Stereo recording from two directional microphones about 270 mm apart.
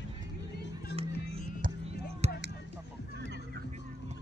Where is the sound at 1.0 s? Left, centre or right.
Right.